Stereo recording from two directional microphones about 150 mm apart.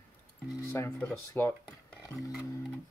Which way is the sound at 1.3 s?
15° left (ahead or behind).